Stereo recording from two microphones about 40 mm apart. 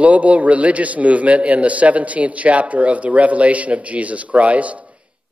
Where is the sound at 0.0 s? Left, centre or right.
Right.